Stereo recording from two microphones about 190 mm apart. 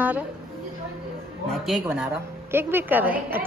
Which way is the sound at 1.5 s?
Centre (ahead or behind).